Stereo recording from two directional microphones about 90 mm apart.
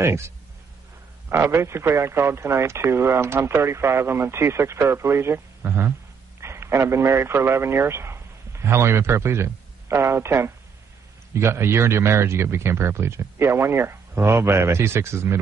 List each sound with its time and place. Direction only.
0.0 s speech: 30° right (ahead or behind)
1.3 s a man's voice: 30° right (ahead or behind)